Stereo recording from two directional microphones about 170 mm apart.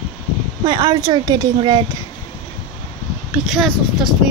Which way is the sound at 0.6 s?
25° right (ahead or behind).